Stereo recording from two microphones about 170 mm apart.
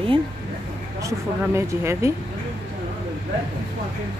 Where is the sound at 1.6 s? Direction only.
15° right (ahead or behind).